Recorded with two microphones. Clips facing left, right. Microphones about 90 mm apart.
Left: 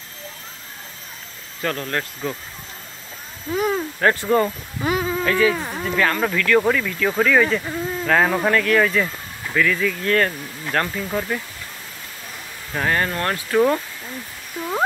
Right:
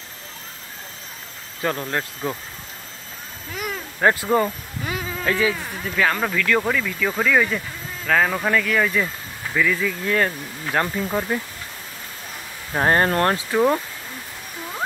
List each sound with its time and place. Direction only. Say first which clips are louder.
1.6 s speech: even; 20° right (ahead or behind)
3.5 s speech: left 9 dB; 30° left (ahead or behind)
4.0 s speech: even; 15° right (ahead or behind)
4.8 s a sound: left 7 dB; 25° left (ahead or behind)
5.2 s speech: left 2 dB; 15° right (ahead or behind)
5.6 s speech: left 4 dB; 20° left (ahead or behind)
5.9 s speech: left 1 dB; 5° right (ahead or behind)
12.7 s speech: right 4 dB; 35° right (ahead or behind)
13.5 s speech: left 4 dB; 10° right (ahead or behind)